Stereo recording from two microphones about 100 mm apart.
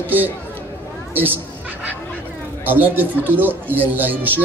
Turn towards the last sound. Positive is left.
turn(degrees=-20)  # may be behind; listen again after turning